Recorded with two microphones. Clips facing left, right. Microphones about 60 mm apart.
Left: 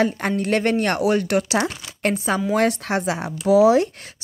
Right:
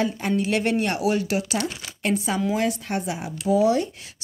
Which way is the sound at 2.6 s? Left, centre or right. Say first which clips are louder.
Left 5 dB; left.